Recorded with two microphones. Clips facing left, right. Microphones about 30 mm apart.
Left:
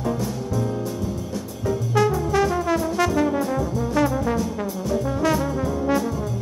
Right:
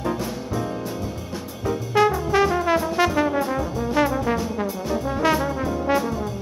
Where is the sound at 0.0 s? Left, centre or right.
Right.